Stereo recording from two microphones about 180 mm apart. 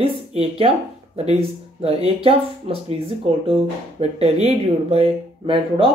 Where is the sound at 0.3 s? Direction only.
35° right (ahead or behind).